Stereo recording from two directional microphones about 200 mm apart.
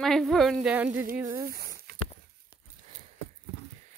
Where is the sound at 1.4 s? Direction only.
50° right (ahead or behind).